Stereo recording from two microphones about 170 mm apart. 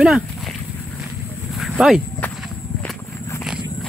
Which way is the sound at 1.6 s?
Centre (ahead or behind).